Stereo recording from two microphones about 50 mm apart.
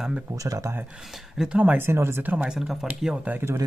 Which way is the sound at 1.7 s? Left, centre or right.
Right.